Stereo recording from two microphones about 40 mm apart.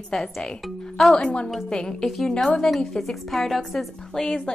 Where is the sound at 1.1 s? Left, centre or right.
Left.